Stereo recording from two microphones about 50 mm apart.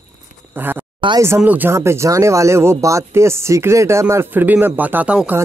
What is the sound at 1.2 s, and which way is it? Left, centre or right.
Speech, right.